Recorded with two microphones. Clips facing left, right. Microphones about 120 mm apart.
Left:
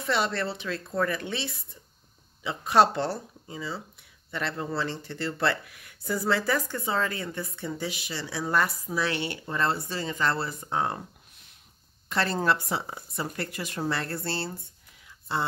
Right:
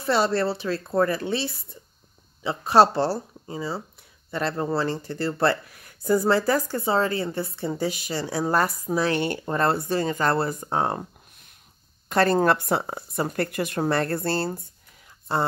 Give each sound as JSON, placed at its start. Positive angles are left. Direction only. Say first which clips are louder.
{"t": 0.0, "sound": "speech", "louder": "right 6 dB", "side_deg": -35}
{"t": 12.1, "sound": "speech", "louder": "right 6 dB", "side_deg": -50}
{"t": 15.0, "sound": "a sound", "louder": "right 5 dB", "side_deg": -45}